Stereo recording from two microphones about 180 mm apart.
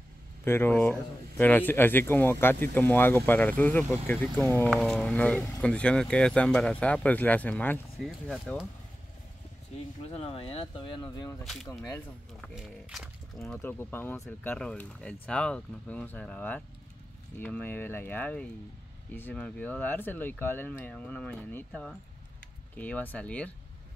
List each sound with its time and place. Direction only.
0.5 s speech: 10° left (ahead or behind)
9.7 s speech: 35° left (ahead or behind); by 11.4 s 20° left (ahead or behind)
12.4 s speech: centre (ahead or behind)